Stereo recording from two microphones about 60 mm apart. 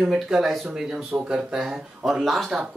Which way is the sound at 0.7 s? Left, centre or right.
Centre.